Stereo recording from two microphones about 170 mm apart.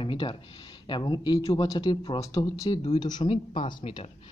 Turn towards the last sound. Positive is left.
turn(degrees=30)  # may be behind; listen again after turning